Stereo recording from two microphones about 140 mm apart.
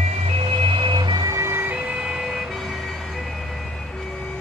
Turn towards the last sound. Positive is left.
turn(degrees=0)  # may be behind; listen again after turning